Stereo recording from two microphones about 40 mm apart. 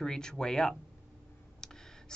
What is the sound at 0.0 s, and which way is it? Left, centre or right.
Speech, centre.